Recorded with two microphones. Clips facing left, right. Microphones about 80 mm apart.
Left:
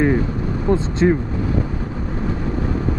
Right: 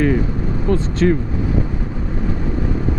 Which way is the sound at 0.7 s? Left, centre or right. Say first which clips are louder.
Even; left.